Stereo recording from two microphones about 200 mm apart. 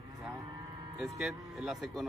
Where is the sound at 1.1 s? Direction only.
Centre (ahead or behind).